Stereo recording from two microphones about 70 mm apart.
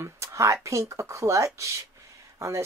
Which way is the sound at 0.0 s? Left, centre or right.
Right.